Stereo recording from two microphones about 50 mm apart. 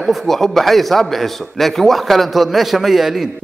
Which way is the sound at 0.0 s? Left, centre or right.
Centre.